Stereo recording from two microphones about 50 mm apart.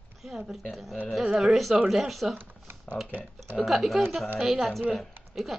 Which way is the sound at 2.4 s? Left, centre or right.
Right.